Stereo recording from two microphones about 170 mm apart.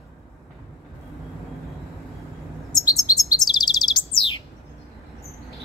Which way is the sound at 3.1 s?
20° left (ahead or behind).